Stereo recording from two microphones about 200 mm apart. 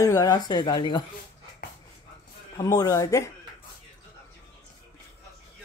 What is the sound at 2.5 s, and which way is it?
Speech, 15° left (ahead or behind).